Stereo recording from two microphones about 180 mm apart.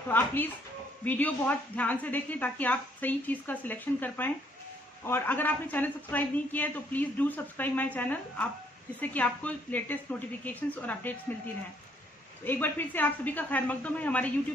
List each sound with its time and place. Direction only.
0.1 s speech: 10° left (ahead or behind)
12.4 s speech: 10° left (ahead or behind)